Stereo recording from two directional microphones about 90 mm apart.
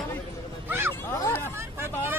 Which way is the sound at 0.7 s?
25° right (ahead or behind).